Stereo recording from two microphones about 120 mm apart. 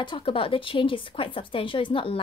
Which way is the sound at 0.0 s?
45° left (ahead or behind).